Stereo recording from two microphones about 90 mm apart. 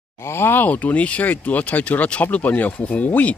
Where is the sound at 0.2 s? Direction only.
25° left (ahead or behind).